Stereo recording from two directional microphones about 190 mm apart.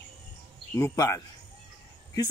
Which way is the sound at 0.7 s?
15° left (ahead or behind).